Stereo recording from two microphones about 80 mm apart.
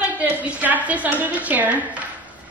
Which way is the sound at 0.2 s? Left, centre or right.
Centre.